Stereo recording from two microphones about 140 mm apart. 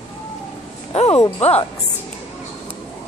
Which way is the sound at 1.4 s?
50° left (ahead or behind).